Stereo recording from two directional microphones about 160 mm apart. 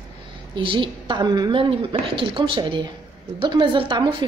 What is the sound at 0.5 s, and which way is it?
A woman's voice, 30° right (ahead or behind).